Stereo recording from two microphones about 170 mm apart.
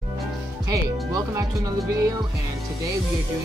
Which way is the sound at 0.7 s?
20° right (ahead or behind).